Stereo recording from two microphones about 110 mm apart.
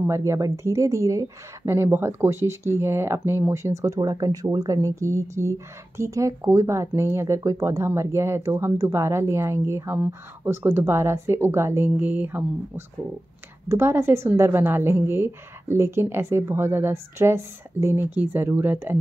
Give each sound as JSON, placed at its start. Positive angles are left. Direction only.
{"t": 0.0, "sound": "speech", "side_deg": -25}